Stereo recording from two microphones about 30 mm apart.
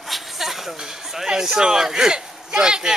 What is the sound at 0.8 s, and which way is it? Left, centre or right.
Speech, centre.